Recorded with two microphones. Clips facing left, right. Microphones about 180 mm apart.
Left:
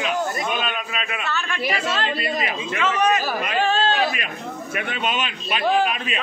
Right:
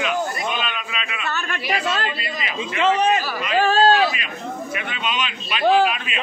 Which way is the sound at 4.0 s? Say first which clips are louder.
Right 2 dB; 50° left (ahead or behind).